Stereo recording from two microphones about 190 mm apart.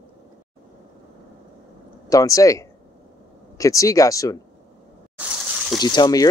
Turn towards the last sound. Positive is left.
turn(degrees=20)  # may be behind; listen again after turning